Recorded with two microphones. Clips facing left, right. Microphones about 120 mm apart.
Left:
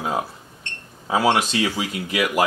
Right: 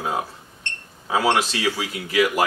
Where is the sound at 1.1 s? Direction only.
10° left (ahead or behind).